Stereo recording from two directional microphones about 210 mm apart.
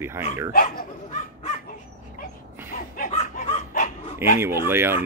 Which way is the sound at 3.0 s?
35° left (ahead or behind).